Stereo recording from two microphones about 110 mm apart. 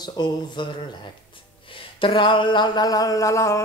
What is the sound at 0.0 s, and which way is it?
Speech, 40° left (ahead or behind).